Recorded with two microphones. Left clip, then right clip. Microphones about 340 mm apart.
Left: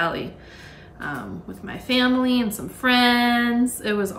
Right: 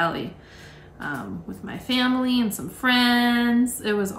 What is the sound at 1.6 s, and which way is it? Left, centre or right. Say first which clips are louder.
Speech: left 3 dB; centre.